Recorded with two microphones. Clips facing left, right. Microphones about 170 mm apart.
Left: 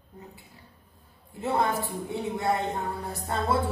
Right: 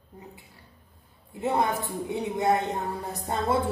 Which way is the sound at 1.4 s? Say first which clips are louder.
Right 1 dB; 20° right (ahead or behind).